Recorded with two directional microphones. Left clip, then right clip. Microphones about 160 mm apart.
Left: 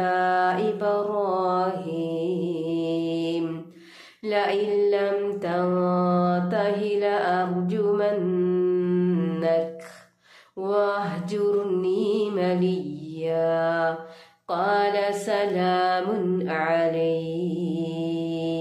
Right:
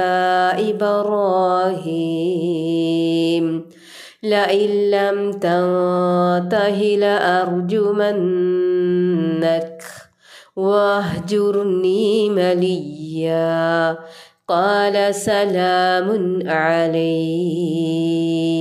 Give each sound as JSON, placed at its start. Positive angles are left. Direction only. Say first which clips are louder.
{"t": 0.0, "sound": "mantra", "louder": "right 6 dB", "side_deg": -40}
{"t": 10.6, "sound": "mantra", "louder": "right 8 dB", "side_deg": -40}